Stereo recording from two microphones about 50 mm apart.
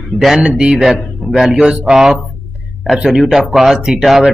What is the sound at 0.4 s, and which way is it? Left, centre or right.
Speech, centre.